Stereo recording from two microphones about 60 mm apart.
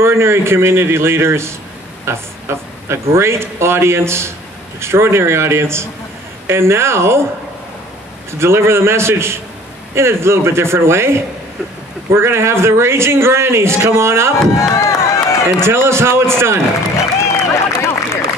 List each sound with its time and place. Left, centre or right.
0.0 s speech: right
8.3 s speech: right
14.5 s crowd: left
15.6 s speech: right
17.7 s a sound: left